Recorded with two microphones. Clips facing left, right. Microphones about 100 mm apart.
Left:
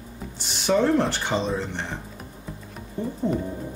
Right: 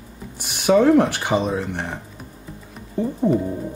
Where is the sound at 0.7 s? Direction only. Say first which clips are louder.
Right 6 dB; 10° right (ahead or behind).